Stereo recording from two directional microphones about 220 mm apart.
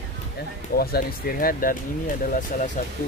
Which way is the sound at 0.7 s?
40° left (ahead or behind).